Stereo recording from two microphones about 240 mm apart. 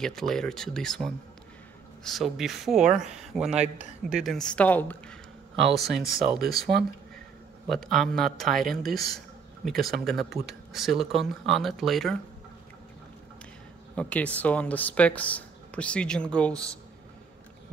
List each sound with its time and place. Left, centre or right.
0.0 s speech: centre
6.7 s speech: right
7.6 s speech: centre
8.9 s speech: centre
9.7 s speech: centre
13.9 s speech: centre